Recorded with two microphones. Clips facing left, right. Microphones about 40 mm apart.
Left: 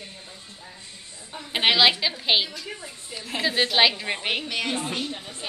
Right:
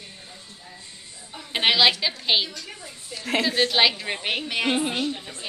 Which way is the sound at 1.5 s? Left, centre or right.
Centre.